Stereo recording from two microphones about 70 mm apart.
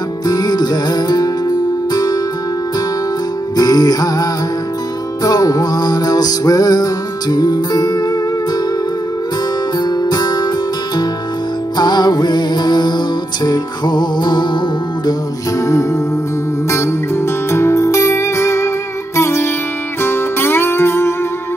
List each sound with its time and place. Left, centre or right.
0.3 s music: left
3.5 s music: left
9.8 s music: left
11.7 s music: left
15.5 s music: left